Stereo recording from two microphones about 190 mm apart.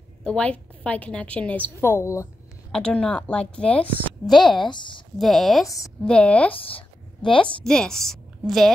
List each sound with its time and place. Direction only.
0.2 s a woman's voice: 5° left (ahead or behind)
4.6 s a woman's voice: 25° left (ahead or behind)
5.2 s a woman's voice: centre (ahead or behind)
6.5 s a woman's voice: 30° left (ahead or behind)
7.6 s a woman's voice: 5° left (ahead or behind)